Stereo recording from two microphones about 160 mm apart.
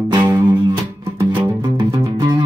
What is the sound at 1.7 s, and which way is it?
Music, 25° right (ahead or behind).